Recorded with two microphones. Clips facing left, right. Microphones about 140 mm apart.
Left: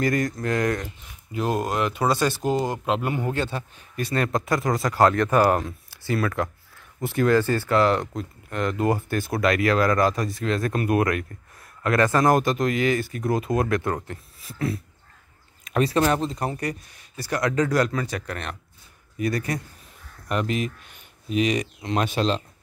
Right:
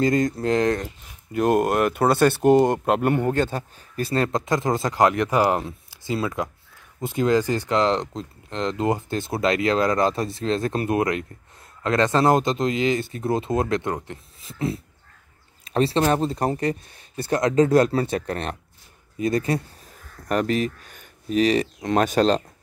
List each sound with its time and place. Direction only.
0.0 s speech: 25° right (ahead or behind)
1.3 s speech: 55° right (ahead or behind)
3.3 s speech: 45° right (ahead or behind); by 19.6 s 25° right (ahead or behind)
20.2 s speech: 40° right (ahead or behind)
21.8 s speech: 45° right (ahead or behind)